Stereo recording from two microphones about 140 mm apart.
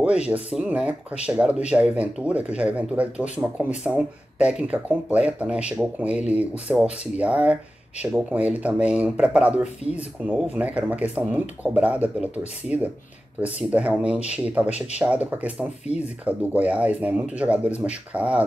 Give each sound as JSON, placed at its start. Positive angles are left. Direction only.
{"t": 0.3, "sound": "speech", "side_deg": -10}